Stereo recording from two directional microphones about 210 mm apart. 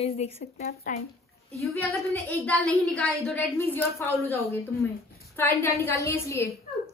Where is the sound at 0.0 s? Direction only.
30° left (ahead or behind).